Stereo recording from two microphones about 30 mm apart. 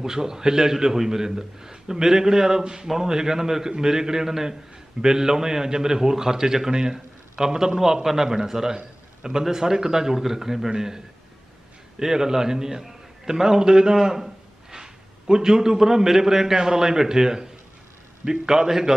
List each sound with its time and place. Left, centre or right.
0.0 s a man's voice: centre
12.0 s a man's voice: centre
13.9 s a man's voice: centre